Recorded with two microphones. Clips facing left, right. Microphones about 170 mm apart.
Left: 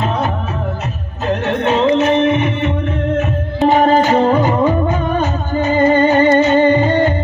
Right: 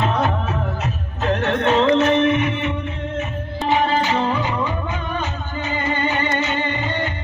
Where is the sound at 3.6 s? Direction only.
45° left (ahead or behind).